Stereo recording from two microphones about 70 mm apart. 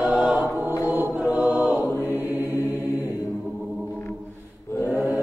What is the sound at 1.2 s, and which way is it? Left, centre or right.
Choir, right.